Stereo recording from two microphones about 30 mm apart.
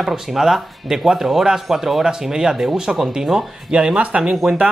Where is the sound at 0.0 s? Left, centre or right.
Centre.